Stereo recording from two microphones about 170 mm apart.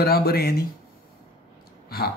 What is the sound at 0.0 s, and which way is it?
Speech, 65° left (ahead or behind).